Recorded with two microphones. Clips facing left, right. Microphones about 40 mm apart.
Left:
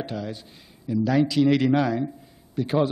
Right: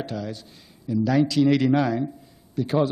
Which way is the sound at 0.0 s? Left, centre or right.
Centre.